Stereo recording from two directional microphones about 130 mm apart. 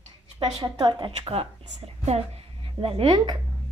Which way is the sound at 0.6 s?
35° right (ahead or behind).